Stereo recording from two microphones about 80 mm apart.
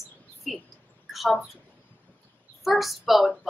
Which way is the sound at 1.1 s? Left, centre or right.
Centre.